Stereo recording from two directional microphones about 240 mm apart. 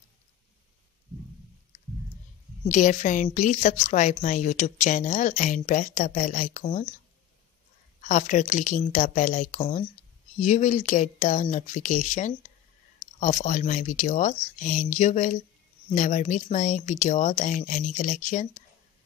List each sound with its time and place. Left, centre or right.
2.7 s a woman's voice: left
8.0 s a woman's voice: left